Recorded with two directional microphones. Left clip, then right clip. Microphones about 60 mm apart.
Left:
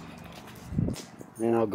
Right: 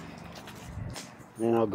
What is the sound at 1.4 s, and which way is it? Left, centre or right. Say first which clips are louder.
Speech: even; left.